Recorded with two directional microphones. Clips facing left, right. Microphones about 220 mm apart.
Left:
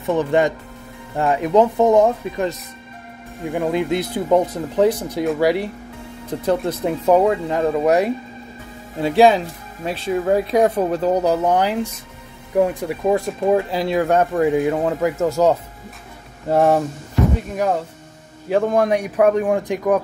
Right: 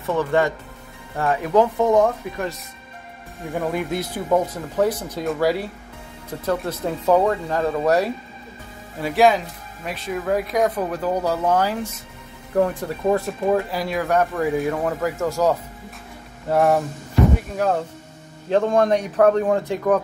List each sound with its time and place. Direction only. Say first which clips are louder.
0.0 s speech: left 3 dB; 20° left (ahead or behind)
3.5 s speech: left 4 dB; 20° left (ahead or behind)
9.0 s speech: left 4 dB; 25° left (ahead or behind)
13.7 s speech: left 5 dB; 25° left (ahead or behind)
17.4 s speech: left 1 dB; 15° left (ahead or behind)